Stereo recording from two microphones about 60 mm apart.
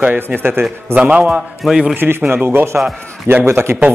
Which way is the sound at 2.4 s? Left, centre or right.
Right.